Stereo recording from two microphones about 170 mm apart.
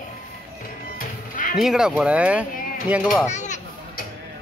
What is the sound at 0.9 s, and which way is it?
Music, 55° left (ahead or behind).